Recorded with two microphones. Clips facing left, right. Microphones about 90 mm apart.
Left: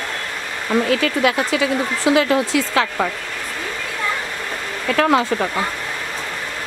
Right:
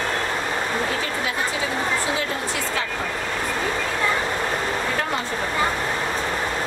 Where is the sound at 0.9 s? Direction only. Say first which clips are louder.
Left 8 dB; 85° left.